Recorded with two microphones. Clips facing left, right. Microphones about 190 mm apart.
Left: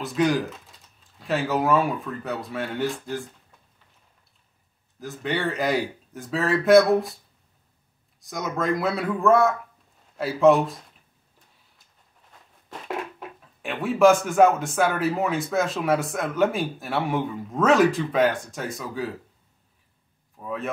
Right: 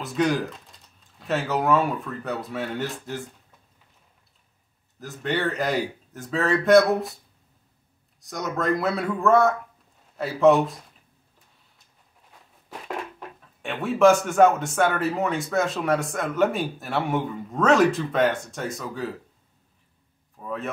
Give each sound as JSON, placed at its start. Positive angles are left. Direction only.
{"t": 0.0, "sound": "speech", "side_deg": 0}
{"t": 5.0, "sound": "speech", "side_deg": 0}
{"t": 8.3, "sound": "speech", "side_deg": 0}
{"t": 12.6, "sound": "speech", "side_deg": 5}
{"t": 20.3, "sound": "speech", "side_deg": 0}